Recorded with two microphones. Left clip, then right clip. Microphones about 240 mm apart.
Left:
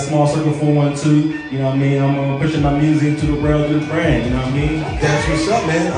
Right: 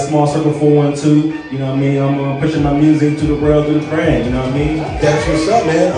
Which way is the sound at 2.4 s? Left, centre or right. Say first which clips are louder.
Right 5 dB; centre.